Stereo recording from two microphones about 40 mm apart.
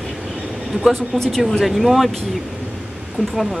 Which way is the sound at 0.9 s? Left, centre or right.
Centre.